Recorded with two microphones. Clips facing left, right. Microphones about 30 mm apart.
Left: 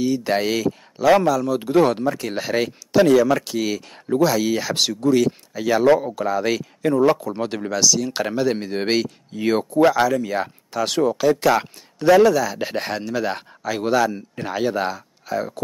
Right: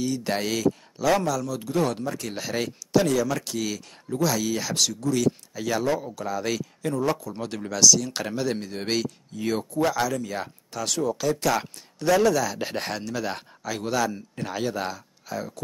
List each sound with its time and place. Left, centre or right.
0.0 s speech: centre
4.7 s speech: left